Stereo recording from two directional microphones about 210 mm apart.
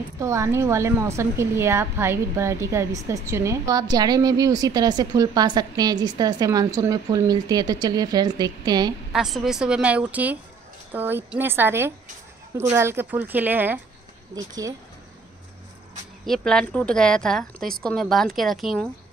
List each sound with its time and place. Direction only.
0.2 s a woman's voice: 15° right (ahead or behind)
9.1 s a woman's voice: centre (ahead or behind)
16.3 s speech: 5° left (ahead or behind)